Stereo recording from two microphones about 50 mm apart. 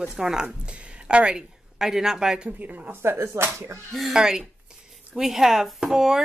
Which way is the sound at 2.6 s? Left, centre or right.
Right.